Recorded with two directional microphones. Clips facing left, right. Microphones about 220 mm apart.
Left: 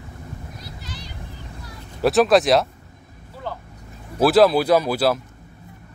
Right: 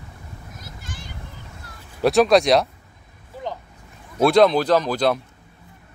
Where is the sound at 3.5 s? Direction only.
15° right (ahead or behind).